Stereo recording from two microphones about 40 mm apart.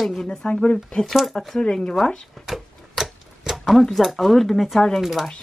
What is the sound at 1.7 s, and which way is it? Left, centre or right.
Speech, left.